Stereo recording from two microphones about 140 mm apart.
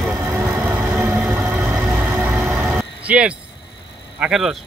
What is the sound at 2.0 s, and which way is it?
Vehicle, 10° right (ahead or behind).